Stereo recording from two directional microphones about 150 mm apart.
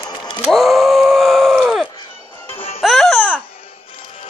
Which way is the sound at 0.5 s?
Centre (ahead or behind).